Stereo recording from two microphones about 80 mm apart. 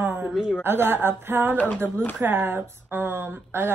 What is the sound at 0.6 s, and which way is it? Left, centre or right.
Speech, right.